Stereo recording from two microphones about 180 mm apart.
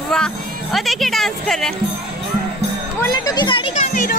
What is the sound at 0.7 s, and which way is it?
Speech, centre (ahead or behind).